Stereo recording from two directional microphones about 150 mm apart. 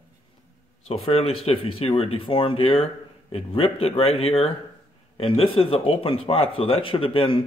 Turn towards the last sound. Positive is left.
turn(degrees=35)  # may be behind; listen again after turning